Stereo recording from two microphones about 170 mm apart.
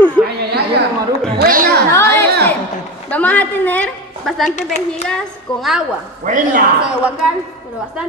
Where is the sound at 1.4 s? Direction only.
60° right (ahead or behind).